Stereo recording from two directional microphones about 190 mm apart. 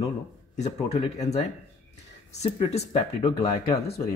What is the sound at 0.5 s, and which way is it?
Speech, 35° left (ahead or behind).